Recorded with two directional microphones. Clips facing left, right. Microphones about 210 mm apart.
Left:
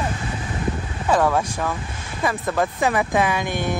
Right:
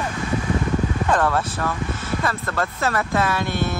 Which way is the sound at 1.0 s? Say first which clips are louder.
Left 6 dB; 10° left (ahead or behind).